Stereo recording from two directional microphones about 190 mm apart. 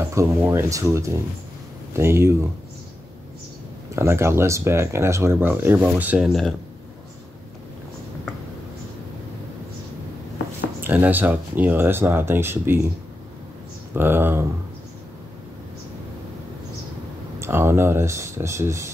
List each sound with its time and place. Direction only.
0.1 s speech: 15° right (ahead or behind)
3.9 s speech: 15° right (ahead or behind)
10.8 s speech: 10° right (ahead or behind)
13.9 s speech: 10° right (ahead or behind)
17.4 s speech: 15° right (ahead or behind)